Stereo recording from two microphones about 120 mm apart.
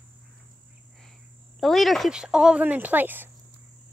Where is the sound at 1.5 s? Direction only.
Centre (ahead or behind); by 3.3 s 15° right (ahead or behind).